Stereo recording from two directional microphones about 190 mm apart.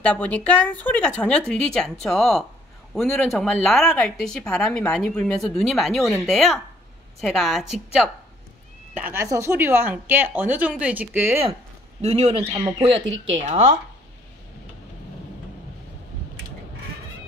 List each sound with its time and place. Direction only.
0.0 s speech: 5° left (ahead or behind)
8.9 s speech: 10° right (ahead or behind)
12.0 s a man's voice: 35° right (ahead or behind)